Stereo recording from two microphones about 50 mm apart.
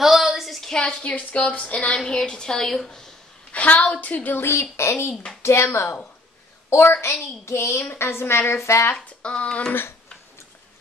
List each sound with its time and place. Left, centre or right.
0.0 s a sound: centre
0.7 s a woman's voice: left; by 3.0 s centre
3.5 s a woman's voice: left
4.4 s a woman's voice: left
6.8 s a woman's voice: left
9.2 s a woman's voice: left